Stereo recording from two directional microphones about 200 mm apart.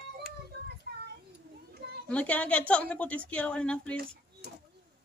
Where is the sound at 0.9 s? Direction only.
50° right (ahead or behind).